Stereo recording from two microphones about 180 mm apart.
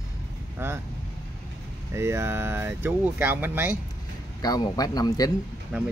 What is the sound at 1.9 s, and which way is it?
Speech, 15° right (ahead or behind).